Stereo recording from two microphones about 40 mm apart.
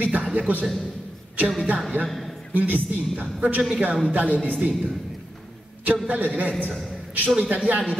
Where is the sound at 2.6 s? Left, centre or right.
Right.